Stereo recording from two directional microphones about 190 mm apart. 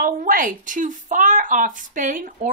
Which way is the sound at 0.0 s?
45° right (ahead or behind).